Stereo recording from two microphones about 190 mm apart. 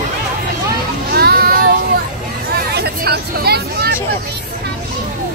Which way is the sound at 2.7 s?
60° right (ahead or behind).